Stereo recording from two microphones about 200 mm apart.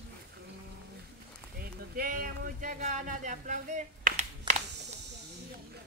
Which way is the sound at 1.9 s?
45° right (ahead or behind).